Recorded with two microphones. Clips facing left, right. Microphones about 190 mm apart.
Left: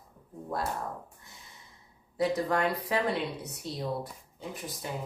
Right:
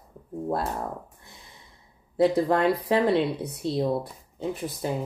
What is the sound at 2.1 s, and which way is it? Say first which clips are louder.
Speech: right 7 dB; 30° right (ahead or behind).